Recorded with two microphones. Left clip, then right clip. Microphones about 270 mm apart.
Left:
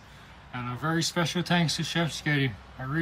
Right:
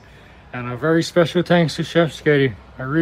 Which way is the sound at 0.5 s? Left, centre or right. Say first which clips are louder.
Right 11 dB; centre.